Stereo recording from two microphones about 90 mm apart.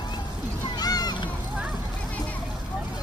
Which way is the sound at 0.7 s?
45° left (ahead or behind).